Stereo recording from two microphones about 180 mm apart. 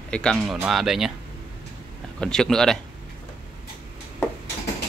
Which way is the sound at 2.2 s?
5° left (ahead or behind).